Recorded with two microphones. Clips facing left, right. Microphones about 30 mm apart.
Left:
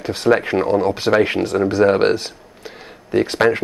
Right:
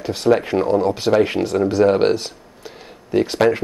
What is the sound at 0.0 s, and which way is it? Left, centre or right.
Speech, centre.